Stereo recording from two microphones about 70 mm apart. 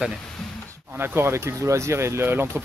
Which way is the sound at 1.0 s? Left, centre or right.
Right.